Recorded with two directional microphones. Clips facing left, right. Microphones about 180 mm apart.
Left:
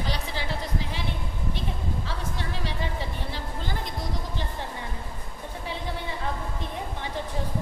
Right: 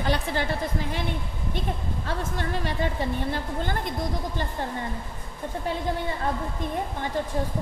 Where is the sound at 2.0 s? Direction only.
50° right (ahead or behind).